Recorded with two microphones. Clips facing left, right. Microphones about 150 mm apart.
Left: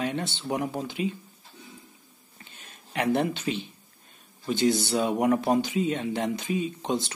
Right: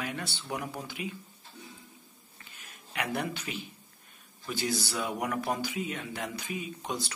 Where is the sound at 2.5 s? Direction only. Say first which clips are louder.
Left 6 dB; 30° left (ahead or behind).